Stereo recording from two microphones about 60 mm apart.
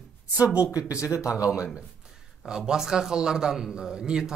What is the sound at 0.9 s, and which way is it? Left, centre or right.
Speech, left.